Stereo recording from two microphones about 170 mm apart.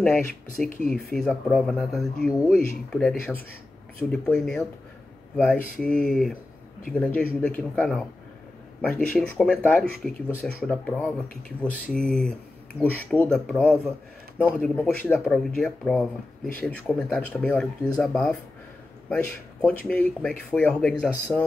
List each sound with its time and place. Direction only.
0.0 s speech: 5° left (ahead or behind)
0.7 s speech: 55° left (ahead or behind)
1.1 s speech: 5° left (ahead or behind)